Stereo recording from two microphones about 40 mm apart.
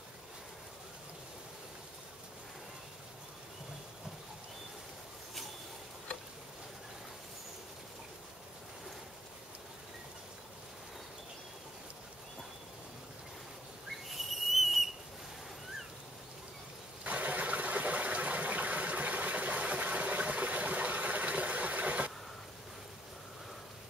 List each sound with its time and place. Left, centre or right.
14.1 s whistle: centre
17.0 s water: right